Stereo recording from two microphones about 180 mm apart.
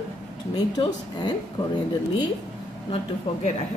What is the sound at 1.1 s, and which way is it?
Speech, 25° left (ahead or behind).